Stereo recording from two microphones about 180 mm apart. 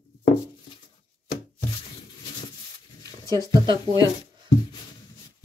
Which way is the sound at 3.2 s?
25° right (ahead or behind).